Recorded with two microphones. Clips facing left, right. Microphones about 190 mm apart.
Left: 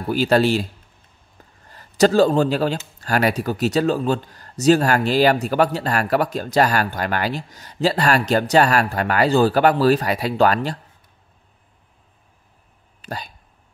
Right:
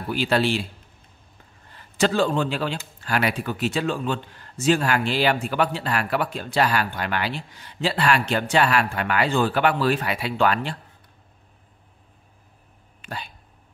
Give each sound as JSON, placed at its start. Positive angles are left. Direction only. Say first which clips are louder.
{"t": 0.1, "sound": "speech", "louder": "left 5 dB", "side_deg": 40}
{"t": 1.7, "sound": "speech", "louder": "left 6 dB", "side_deg": 40}
{"t": 13.0, "sound": "speech", "louder": "left 4 dB", "side_deg": 40}